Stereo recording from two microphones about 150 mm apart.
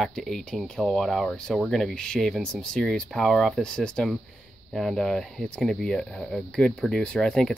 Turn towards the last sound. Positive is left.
turn(degrees=5)  # may be behind; listen again after turning